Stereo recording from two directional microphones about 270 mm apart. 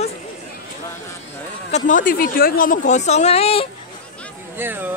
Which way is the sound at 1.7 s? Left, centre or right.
Left.